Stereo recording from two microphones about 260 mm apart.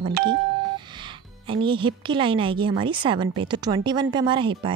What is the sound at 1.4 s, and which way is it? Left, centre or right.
A woman's voice, centre.